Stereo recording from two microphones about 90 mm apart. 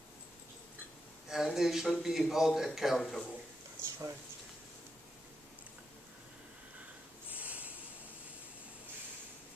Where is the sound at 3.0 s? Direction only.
10° left (ahead or behind).